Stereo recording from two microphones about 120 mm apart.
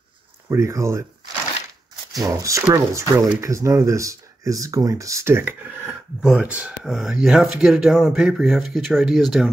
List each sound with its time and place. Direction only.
0.5 s speech: 25° right (ahead or behind)
2.1 s speech: 30° right (ahead or behind); by 9.5 s centre (ahead or behind)